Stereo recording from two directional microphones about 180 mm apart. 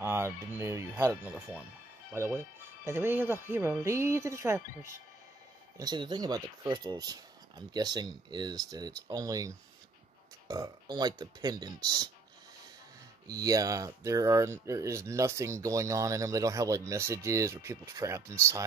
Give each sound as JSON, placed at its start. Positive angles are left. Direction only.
{"t": 0.0, "sound": "speech", "side_deg": -15}
{"t": 13.3, "sound": "speech", "side_deg": -20}